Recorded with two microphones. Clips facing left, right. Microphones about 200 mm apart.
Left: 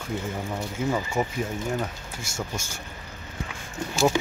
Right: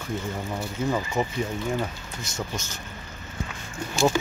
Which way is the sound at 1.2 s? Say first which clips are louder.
Even; 10° left (ahead or behind).